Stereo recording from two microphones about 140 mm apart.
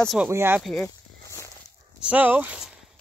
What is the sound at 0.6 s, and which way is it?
Speech, centre (ahead or behind).